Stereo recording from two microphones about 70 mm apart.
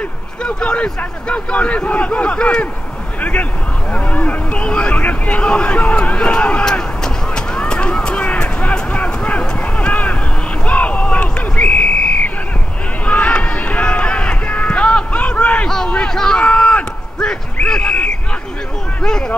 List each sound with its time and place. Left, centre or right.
0.4 s a man's voice: centre
7.3 s a sound: centre
13.0 s run: centre
19.0 s a man's voice: centre